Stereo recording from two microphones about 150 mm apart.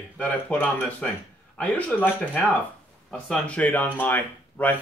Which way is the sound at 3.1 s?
10° left (ahead or behind).